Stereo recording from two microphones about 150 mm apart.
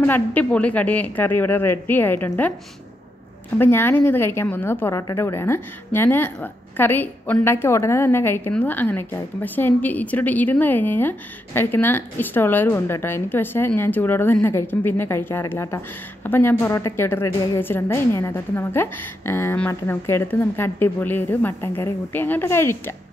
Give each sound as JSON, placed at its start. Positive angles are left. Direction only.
{"t": 0.0, "sound": "a woman's voice", "side_deg": 10}
{"t": 3.5, "sound": "a woman's voice", "side_deg": 15}